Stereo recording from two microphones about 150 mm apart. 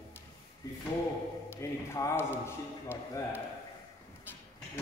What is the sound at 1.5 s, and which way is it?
A man's voice, 20° left (ahead or behind).